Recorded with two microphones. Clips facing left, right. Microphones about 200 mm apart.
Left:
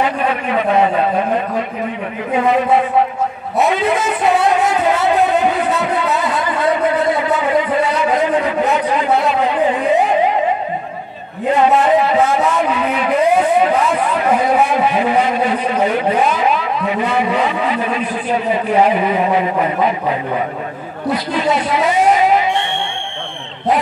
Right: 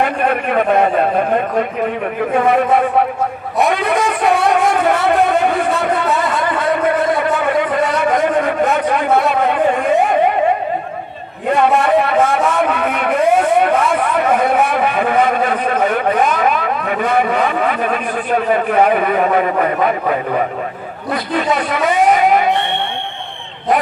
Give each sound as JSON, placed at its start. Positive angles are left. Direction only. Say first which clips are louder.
{"t": 0.0, "sound": "a man's voice", "louder": "right 1 dB", "side_deg": -55}
{"t": 2.3, "sound": "a man's voice", "louder": "even", "side_deg": -55}
{"t": 4.5, "sound": "a man's voice", "louder": "right 1 dB", "side_deg": -60}
{"t": 5.9, "sound": "a sound", "louder": "right 1 dB", "side_deg": -60}
{"t": 11.5, "sound": "a man's voice", "louder": "even", "side_deg": -60}